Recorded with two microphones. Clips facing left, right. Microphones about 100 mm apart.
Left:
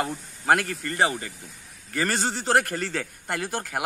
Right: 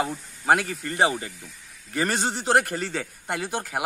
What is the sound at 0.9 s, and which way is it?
A man's voice, 20° right (ahead or behind).